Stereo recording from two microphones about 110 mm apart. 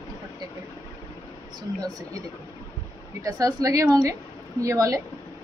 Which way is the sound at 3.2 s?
30° right (ahead or behind).